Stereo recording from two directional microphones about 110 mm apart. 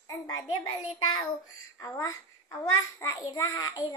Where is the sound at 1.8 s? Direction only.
30° left (ahead or behind).